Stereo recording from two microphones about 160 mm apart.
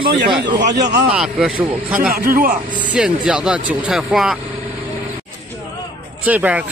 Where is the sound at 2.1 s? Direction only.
65° right (ahead or behind).